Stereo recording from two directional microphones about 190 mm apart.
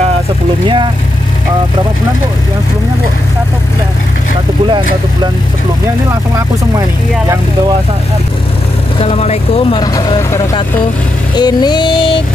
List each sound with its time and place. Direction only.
9.0 s speech: 30° left (ahead or behind)
9.9 s speech: 20° left (ahead or behind)
11.3 s music: 20° left (ahead or behind)